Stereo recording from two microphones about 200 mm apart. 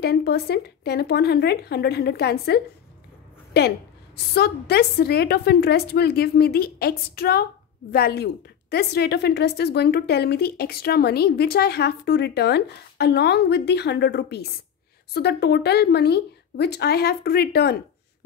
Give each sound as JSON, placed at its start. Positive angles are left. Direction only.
{"t": 0.0, "sound": "a woman's voice", "side_deg": 55}